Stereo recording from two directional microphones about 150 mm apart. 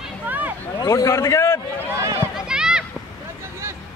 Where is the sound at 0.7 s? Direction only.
20° left (ahead or behind).